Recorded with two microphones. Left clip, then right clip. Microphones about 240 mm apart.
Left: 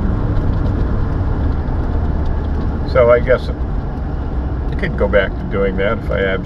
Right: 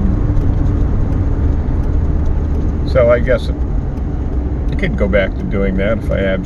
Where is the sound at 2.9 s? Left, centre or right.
Right.